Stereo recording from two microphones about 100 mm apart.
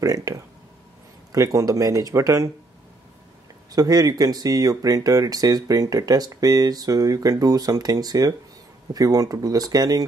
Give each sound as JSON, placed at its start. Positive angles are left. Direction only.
{"t": 0.0, "sound": "speech", "side_deg": -35}
{"t": 3.7, "sound": "speech", "side_deg": -40}